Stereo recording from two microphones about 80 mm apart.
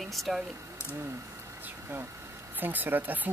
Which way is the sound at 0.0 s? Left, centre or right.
Centre.